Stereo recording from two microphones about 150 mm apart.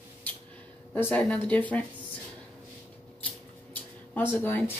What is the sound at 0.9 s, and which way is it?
Speech, 10° left (ahead or behind).